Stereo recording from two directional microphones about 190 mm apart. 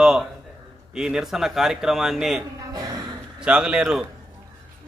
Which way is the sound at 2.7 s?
20° right (ahead or behind).